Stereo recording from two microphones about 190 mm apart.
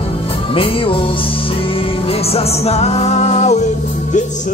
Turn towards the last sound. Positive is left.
turn(degrees=35)  # may be behind; listen again after turning